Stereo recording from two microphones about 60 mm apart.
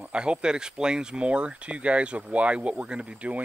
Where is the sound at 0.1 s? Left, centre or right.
Centre.